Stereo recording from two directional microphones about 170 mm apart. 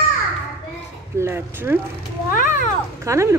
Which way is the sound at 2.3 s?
50° left (ahead or behind).